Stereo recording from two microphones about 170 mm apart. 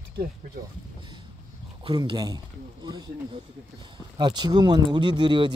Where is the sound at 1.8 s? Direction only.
25° right (ahead or behind).